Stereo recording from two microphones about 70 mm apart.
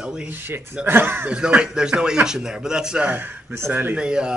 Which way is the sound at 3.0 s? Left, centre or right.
Right.